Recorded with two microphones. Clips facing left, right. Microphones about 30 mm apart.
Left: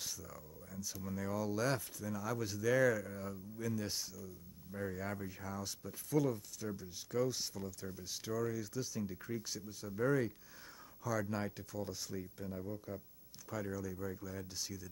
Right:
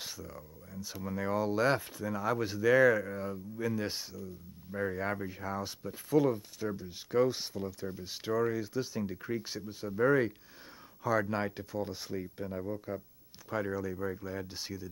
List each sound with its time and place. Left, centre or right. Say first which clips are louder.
0.0 s speech: right 4 dB; right